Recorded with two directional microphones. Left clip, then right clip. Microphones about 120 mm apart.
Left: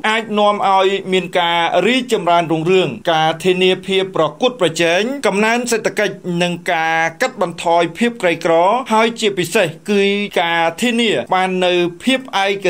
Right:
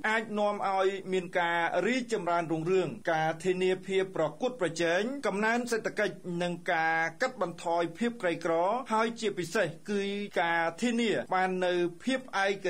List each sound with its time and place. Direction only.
0.0 s speech: 15° left (ahead or behind)